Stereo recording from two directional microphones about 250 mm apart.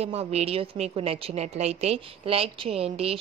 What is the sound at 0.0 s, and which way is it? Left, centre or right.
A woman's voice, right.